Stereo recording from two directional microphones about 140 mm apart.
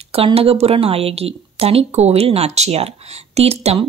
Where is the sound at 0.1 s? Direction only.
45° right (ahead or behind).